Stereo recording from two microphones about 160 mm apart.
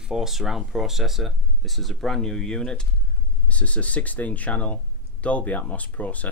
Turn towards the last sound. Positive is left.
turn(degrees=10)  # may be behind; listen again after turning